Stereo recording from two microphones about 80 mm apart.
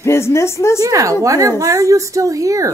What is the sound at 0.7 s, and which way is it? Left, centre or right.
A woman's voice, right.